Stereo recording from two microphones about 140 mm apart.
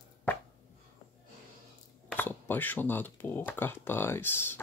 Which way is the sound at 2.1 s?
15° left (ahead or behind).